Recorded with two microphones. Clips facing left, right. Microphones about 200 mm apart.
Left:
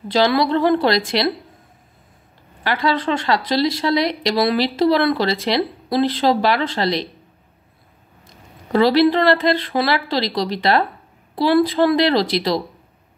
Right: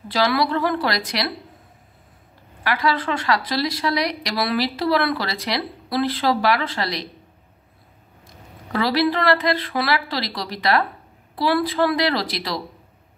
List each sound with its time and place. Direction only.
0.1 s speech: 25° left (ahead or behind)
2.6 s speech: 25° left (ahead or behind)
8.7 s speech: 25° left (ahead or behind)